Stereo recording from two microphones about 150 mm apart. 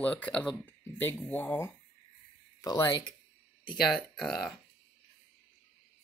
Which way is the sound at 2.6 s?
25° left (ahead or behind).